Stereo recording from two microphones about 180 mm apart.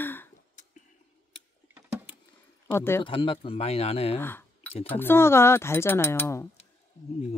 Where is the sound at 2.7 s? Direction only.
15° left (ahead or behind).